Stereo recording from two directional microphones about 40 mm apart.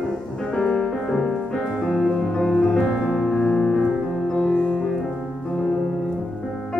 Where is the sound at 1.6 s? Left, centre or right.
Centre.